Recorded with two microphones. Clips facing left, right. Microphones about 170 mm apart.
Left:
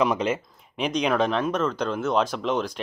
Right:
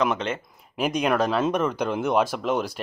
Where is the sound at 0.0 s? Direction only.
10° left (ahead or behind).